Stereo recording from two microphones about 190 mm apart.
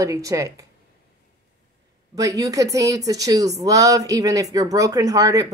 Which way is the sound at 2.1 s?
20° right (ahead or behind).